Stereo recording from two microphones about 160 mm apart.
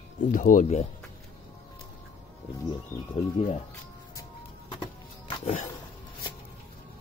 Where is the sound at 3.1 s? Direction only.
40° left (ahead or behind).